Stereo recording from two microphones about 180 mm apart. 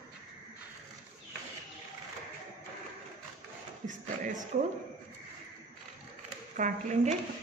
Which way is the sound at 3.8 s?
45° right (ahead or behind).